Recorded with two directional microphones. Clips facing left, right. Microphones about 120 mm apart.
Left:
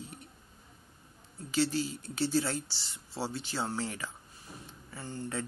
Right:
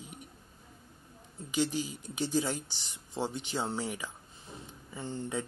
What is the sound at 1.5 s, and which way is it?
Speech, 15° right (ahead or behind).